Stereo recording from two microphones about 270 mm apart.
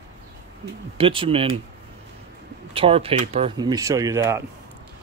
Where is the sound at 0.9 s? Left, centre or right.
Centre.